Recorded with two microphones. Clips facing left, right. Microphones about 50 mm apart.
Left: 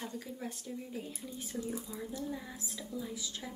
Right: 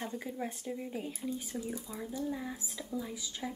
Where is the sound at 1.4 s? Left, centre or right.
Centre.